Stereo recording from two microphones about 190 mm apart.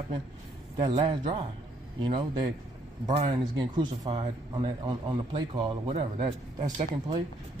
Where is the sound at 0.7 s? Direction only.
25° right (ahead or behind).